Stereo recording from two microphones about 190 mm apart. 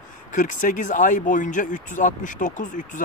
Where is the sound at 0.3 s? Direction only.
40° left (ahead or behind).